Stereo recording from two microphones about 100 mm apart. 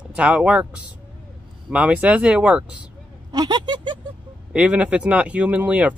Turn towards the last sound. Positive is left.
turn(degrees=-15)  # may be behind; listen again after turning